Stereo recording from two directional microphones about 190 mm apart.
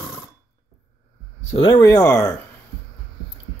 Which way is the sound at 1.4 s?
35° left (ahead or behind).